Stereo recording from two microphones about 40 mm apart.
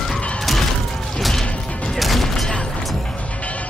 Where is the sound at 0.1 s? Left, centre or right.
Centre.